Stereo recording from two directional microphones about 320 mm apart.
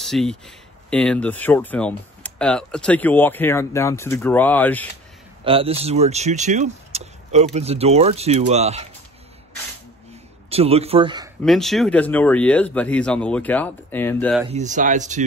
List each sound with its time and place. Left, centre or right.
0.0 s speech: centre
5.4 s speech: centre
10.5 s a man's voice: centre
11.4 s speech: centre
14.5 s speech: right